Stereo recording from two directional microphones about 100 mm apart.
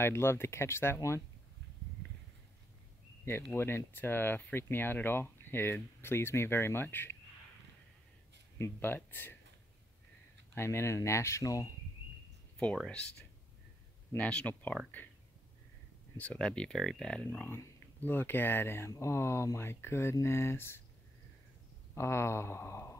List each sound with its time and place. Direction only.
0.0 s speech: 25° left (ahead or behind)
3.5 s speech: 25° left (ahead or behind)
8.5 s speech: 25° left (ahead or behind)
10.5 s speech: 25° left (ahead or behind)
12.5 s speech: 10° left (ahead or behind)
14.1 s speech: 15° left (ahead or behind)
16.2 s speech: 10° left (ahead or behind)
21.9 s speech: 25° left (ahead or behind)